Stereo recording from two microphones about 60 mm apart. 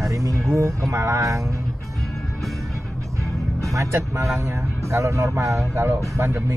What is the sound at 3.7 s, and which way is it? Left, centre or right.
A man's voice, right.